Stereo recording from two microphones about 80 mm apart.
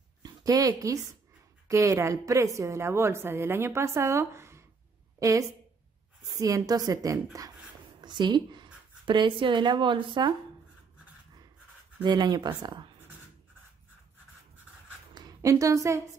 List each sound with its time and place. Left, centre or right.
0.2 s a woman's voice: right
8.0 s speech: right
12.0 s speech: right
15.1 s a woman's voice: right